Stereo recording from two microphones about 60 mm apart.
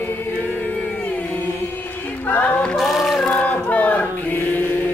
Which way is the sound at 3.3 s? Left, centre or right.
Left.